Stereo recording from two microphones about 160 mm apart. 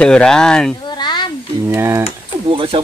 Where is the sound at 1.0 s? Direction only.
30° left (ahead or behind).